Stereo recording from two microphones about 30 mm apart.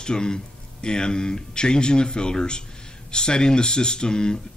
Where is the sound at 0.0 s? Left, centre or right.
Left.